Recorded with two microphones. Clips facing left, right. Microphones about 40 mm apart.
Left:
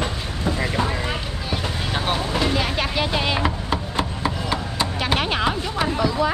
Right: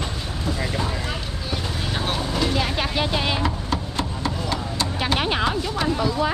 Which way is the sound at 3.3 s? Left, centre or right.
Centre.